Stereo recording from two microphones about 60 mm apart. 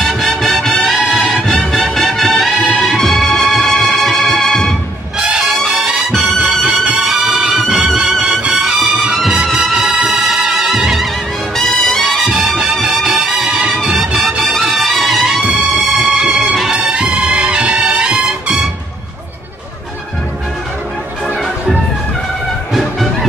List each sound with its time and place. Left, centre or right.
0.0 s music: centre
5.2 s music: centre
8.6 s music: centre
11.5 s music: centre
13.0 s music: centre